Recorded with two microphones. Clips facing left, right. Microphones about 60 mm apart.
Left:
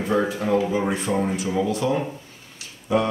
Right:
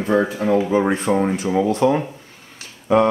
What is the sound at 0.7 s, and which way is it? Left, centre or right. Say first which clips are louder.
Speech: right 5 dB; right.